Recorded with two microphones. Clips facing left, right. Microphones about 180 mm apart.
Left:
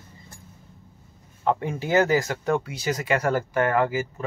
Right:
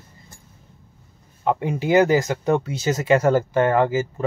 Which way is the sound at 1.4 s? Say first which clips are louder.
Right 3 dB; 15° right (ahead or behind).